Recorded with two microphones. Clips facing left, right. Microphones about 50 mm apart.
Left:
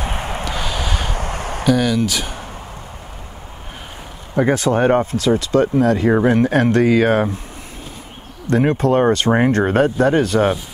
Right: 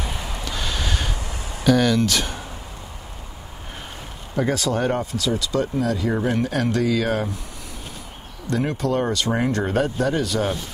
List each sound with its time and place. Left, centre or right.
0.0 s a sound: left
0.5 s snort: centre
1.1 s a sound: left
1.7 s speech: centre
4.4 s speech: left
8.5 s speech: left